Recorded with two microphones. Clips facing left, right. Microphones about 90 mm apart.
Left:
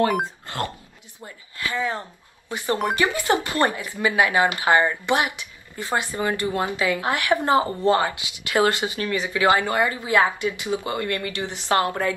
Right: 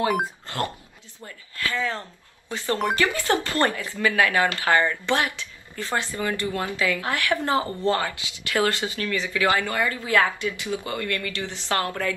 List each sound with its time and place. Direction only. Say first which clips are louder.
0.5 s dog: even; 20° left (ahead or behind)
1.2 s speech: even; 20° left (ahead or behind)